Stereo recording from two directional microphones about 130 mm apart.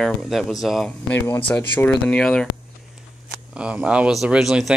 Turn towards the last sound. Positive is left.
turn(degrees=-5)  # may be behind; listen again after turning